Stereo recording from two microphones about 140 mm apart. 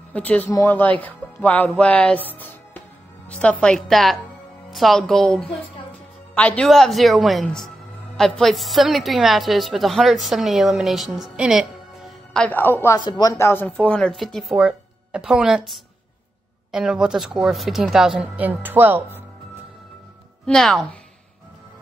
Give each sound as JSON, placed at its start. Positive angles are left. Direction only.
{"t": 0.1, "sound": "a woman's voice", "side_deg": 10}
{"t": 11.3, "sound": "music", "side_deg": -5}
{"t": 12.4, "sound": "speech", "side_deg": 15}
{"t": 13.0, "sound": "a woman's voice", "side_deg": 30}
{"t": 20.4, "sound": "a woman's voice", "side_deg": 5}